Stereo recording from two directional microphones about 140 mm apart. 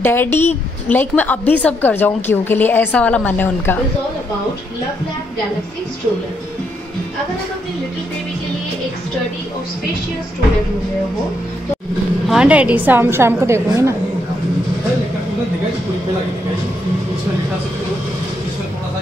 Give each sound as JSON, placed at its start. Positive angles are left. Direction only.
{"t": 0.0, "sound": "a woman's voice", "side_deg": 15}
{"t": 12.3, "sound": "a woman's voice", "side_deg": -10}